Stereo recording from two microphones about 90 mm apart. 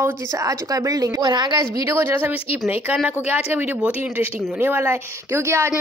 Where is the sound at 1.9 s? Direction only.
25° right (ahead or behind).